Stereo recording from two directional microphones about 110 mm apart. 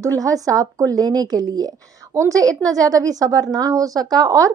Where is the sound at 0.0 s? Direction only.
30° right (ahead or behind).